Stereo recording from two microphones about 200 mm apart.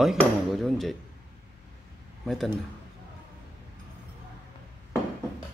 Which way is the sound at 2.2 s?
Centre (ahead or behind).